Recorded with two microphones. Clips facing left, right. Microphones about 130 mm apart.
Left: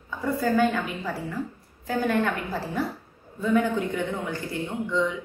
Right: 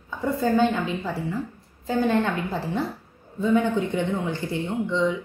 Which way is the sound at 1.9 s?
25° right (ahead or behind).